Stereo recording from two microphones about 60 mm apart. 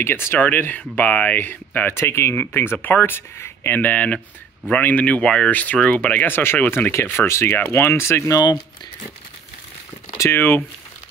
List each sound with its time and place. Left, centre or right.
0.0 s speech: left
2.0 s speech: left
3.9 s speech: left
5.5 s speech: left
10.3 s speech: left